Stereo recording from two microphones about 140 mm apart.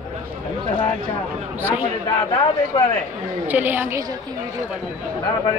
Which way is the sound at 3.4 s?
15° right (ahead or behind).